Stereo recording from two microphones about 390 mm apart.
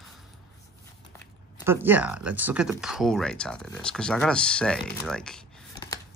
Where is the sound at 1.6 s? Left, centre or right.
Centre.